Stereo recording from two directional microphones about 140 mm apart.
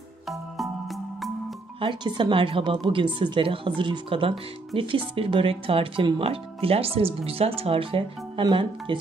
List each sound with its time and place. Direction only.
0.3 s music: centre (ahead or behind)
1.8 s speech: 35° right (ahead or behind)